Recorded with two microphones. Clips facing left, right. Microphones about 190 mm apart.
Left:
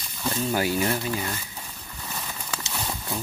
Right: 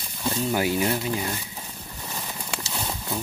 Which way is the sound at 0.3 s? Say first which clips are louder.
Right 1 dB; 15° right (ahead or behind).